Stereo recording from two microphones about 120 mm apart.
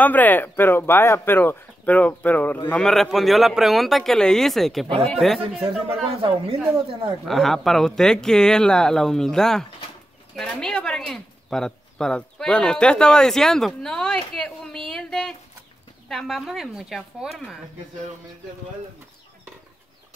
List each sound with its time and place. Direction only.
0.0 s speech: 15° left (ahead or behind)
2.7 s speech: 5° left (ahead or behind)
5.9 s speech: 50° right (ahead or behind)
7.2 s speech: centre (ahead or behind)